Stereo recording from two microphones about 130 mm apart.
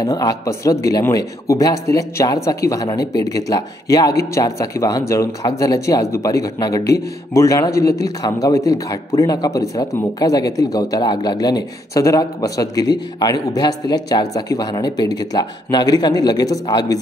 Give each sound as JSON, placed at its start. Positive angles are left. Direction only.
{"t": 0.0, "sound": "speech", "side_deg": 30}